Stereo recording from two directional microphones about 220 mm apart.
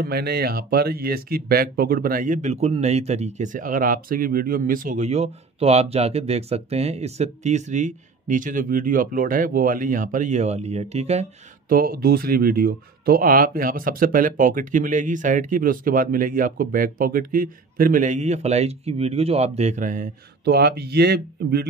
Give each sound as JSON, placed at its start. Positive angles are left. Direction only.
{"t": 0.0, "sound": "speech", "side_deg": -45}
{"t": 11.7, "sound": "speech", "side_deg": -40}